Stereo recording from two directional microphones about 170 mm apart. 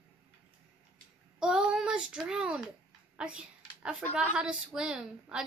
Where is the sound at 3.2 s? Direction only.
5° right (ahead or behind).